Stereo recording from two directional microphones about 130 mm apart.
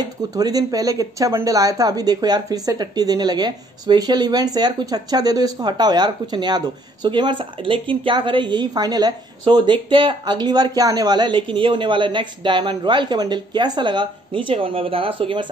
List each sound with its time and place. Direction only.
0.3 s speech: 30° right (ahead or behind)